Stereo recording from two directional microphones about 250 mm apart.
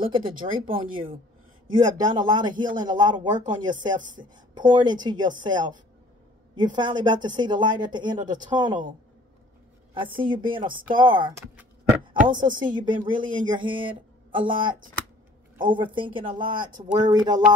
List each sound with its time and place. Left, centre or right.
0.0 s a woman's voice: centre
9.9 s speech: centre